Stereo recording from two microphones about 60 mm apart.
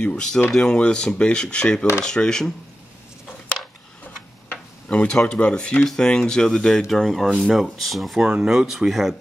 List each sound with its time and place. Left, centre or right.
0.0 s speech: centre
4.8 s speech: left; by 9.1 s centre